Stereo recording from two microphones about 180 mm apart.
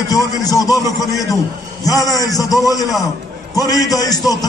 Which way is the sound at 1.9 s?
20° left (ahead or behind).